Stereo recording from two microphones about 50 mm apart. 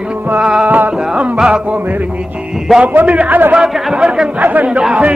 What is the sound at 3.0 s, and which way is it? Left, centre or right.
Speech, right.